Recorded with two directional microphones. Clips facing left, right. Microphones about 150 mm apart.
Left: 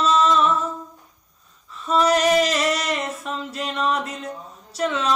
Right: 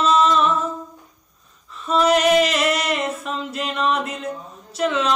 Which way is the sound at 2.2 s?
35° left (ahead or behind).